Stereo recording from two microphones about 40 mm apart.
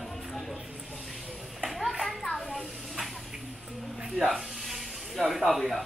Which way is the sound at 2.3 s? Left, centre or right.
Centre.